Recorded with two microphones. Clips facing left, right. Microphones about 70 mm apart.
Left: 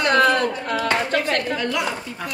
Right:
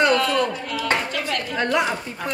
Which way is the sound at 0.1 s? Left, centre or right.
Left.